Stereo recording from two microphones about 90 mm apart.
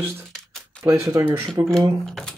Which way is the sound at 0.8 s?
35° right (ahead or behind).